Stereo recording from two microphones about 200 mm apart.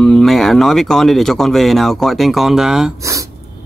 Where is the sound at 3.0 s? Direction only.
15° right (ahead or behind).